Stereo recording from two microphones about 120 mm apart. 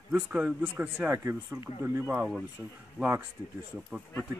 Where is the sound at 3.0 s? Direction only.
5° right (ahead or behind).